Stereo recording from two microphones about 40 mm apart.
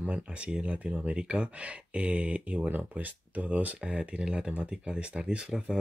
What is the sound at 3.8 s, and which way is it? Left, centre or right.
Speech, right.